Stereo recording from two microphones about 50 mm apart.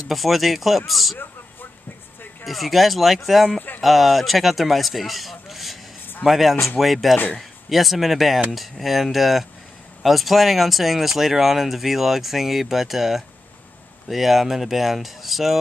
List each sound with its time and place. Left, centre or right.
0.1 s speech: centre
1.1 s a sound: left
2.4 s speech: centre